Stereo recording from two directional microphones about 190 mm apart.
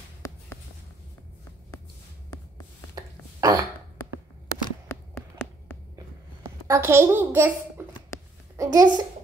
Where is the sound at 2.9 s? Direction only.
20° right (ahead or behind).